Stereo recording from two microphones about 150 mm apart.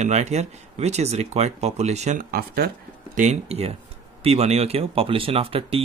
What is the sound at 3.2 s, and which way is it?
Speech, 45° right (ahead or behind).